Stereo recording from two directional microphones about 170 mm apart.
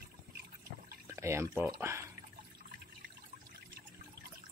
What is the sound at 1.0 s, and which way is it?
Speech, 15° right (ahead or behind).